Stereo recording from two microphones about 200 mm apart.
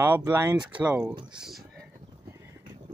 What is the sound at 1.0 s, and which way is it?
Speech, 25° right (ahead or behind).